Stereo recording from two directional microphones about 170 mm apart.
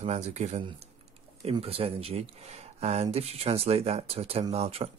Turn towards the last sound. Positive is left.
turn(degrees=-35)  # may be behind; listen again after turning